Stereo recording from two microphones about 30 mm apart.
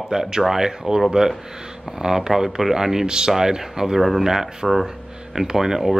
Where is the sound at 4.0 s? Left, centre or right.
Centre.